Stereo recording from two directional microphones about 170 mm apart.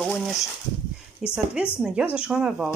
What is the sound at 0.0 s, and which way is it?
Speech, centre (ahead or behind).